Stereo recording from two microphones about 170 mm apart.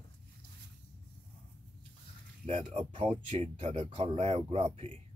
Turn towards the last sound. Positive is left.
turn(degrees=-35)  # may be behind; listen again after turning